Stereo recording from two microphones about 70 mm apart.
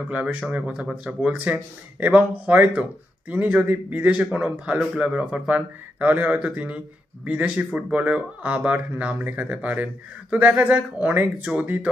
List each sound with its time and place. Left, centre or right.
0.1 s speech: right